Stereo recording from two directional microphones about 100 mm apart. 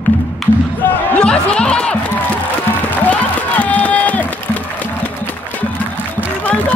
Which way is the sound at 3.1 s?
15° left (ahead or behind).